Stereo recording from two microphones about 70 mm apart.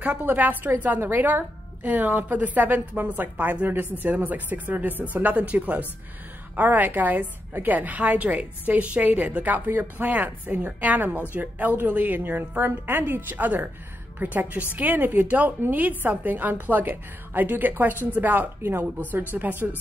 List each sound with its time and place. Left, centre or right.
0.0 s a woman's voice: right